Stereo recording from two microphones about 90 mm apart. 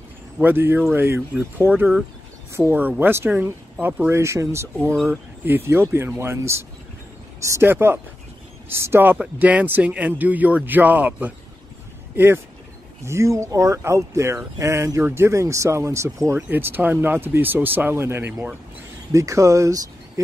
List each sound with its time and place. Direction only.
0.4 s speech: 20° right (ahead or behind)
5.0 s speech: 20° right (ahead or behind)
9.2 s a man's voice: 15° right (ahead or behind)
13.0 s speech: 30° right (ahead or behind)
16.3 s speech: 20° right (ahead or behind)
19.1 s speech: 35° right (ahead or behind)